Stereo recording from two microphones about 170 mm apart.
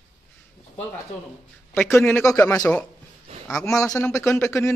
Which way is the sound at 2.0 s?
15° left (ahead or behind).